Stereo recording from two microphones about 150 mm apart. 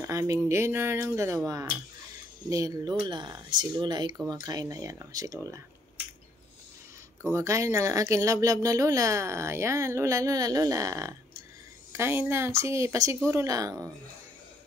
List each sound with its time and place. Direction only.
0.0 s speech: 20° right (ahead or behind)
7.2 s speech: 20° right (ahead or behind)